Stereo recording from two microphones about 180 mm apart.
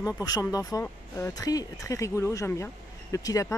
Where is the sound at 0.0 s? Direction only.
20° left (ahead or behind).